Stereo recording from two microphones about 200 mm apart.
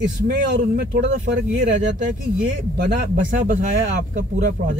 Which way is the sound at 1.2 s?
40° right (ahead or behind).